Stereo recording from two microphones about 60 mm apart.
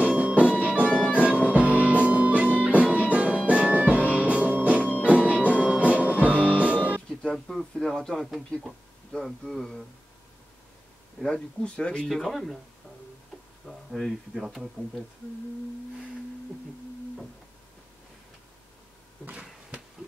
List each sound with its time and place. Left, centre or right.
0.0 s music: right
7.1 s music: centre
7.3 s a sound: centre
11.2 s speech: centre
12.1 s speech: centre
13.7 s speech: centre